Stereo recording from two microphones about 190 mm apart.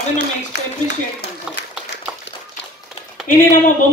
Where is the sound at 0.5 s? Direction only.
70° left (ahead or behind).